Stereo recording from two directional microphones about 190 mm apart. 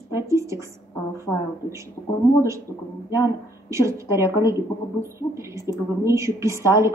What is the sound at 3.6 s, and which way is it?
A woman's voice, 15° right (ahead or behind).